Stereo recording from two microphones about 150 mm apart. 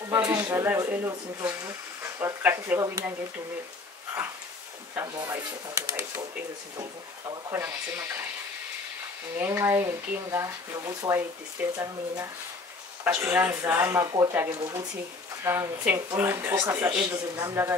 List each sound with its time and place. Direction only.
0.1 s speech: 20° right (ahead or behind)
4.9 s speech: 25° right (ahead or behind)
7.2 s speech: 15° right (ahead or behind)
9.4 s speech: 20° right (ahead or behind)
13.8 s speech: 25° right (ahead or behind)